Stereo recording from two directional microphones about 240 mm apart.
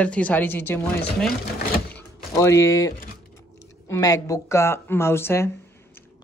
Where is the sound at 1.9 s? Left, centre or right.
Centre.